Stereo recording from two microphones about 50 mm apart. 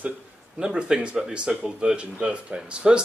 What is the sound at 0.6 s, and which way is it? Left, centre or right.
Speech, centre.